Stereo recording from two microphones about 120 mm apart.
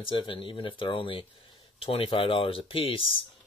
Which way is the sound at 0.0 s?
45° left (ahead or behind).